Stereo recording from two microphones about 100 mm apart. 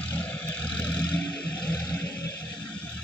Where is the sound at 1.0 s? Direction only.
45° left (ahead or behind).